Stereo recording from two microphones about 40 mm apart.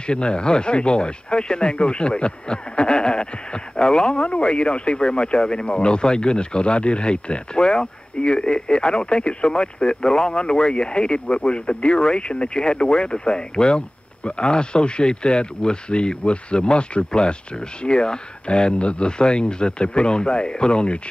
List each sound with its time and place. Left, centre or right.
0.0 s speech: left